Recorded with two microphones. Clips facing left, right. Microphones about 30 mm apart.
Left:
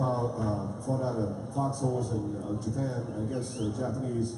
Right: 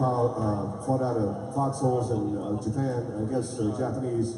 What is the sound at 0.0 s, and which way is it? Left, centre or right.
Music, centre.